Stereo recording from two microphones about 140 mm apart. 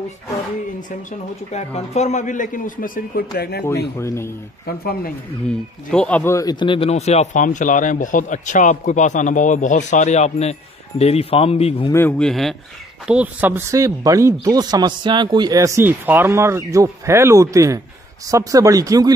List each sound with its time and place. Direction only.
1.5 s a man's voice: 50° left (ahead or behind); by 3.4 s 85° left
3.6 s speech: 20° left (ahead or behind)
5.9 s speech: 10° left (ahead or behind)
6.3 s speech: 30° left (ahead or behind); by 7.4 s 50° left (ahead or behind)
7.4 s a man's voice: 65° left (ahead or behind); by 11.9 s 45° left (ahead or behind)
11.9 s speech: 15° left (ahead or behind)
12.2 s speech: centre (ahead or behind)
13.0 s speech: 10° right (ahead or behind); by 19.1 s 25° right (ahead or behind)